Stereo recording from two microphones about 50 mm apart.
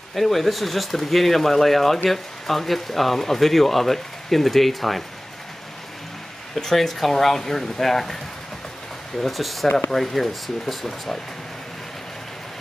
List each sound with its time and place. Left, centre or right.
0.1 s speech: centre
6.5 s speech: centre
9.2 s speech: centre